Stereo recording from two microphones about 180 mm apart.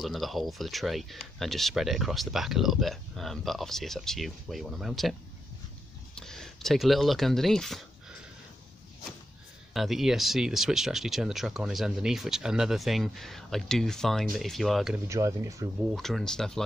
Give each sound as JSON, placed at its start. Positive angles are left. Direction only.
{"t": 0.0, "sound": "speech", "side_deg": 0}
{"t": 6.1, "sound": "speech", "side_deg": 5}
{"t": 9.8, "sound": "speech", "side_deg": 0}
{"t": 15.0, "sound": "speech", "side_deg": -15}
{"t": 15.9, "sound": "speech", "side_deg": 0}